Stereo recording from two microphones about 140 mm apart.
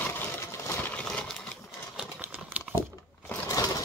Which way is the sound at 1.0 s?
5° left (ahead or behind).